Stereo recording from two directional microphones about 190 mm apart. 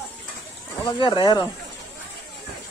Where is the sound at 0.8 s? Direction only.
25° left (ahead or behind).